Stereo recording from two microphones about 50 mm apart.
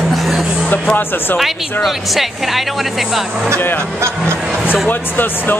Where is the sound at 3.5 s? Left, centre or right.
Left.